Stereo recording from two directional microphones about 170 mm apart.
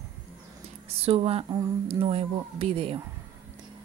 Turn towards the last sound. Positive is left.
turn(degrees=-30)  # may be behind; listen again after turning